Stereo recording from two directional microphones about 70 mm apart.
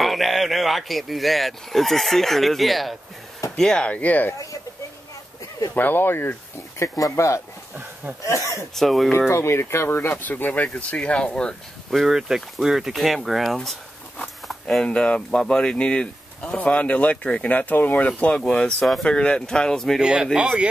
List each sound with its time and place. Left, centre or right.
0.0 s speech: centre
3.9 s speech: left
5.8 s speech: left
6.8 s speech: left
7.7 s a sound: right
8.2 s speech: left
8.7 s speech: centre
9.3 s speech: left; by 13.7 s centre
14.2 s a sound: centre
14.9 s speech: centre
20.0 s speech: centre